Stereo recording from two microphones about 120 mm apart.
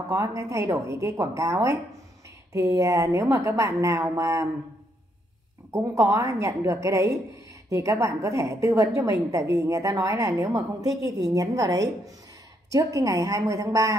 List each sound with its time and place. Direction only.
0.1 s a woman's voice: 25° right (ahead or behind)
5.7 s a woman's voice: 25° right (ahead or behind)